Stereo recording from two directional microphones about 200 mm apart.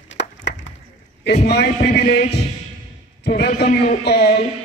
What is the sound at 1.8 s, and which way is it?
Speech, 55° left (ahead or behind).